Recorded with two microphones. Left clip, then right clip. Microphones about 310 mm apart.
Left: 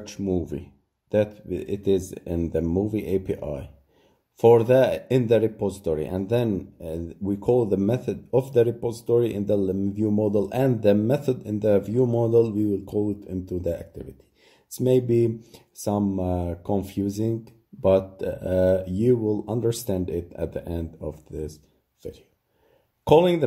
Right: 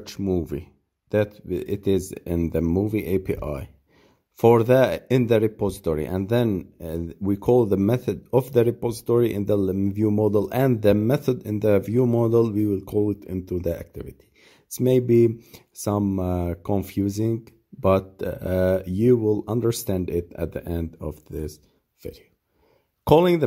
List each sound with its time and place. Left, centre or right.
0.0 s speech: right
23.0 s speech: right